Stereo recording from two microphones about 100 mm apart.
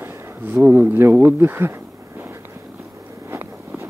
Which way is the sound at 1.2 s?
20° right (ahead or behind).